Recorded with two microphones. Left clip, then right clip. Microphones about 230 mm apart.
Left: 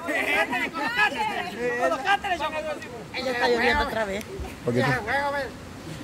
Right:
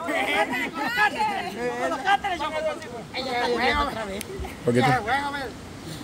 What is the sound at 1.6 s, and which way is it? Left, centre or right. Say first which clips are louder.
Speech: left 2 dB; centre.